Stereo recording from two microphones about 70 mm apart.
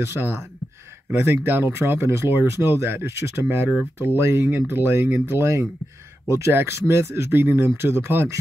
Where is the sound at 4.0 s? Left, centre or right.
Right.